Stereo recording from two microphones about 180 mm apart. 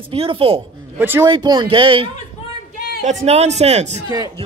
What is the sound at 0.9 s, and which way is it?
Speech, 10° right (ahead or behind).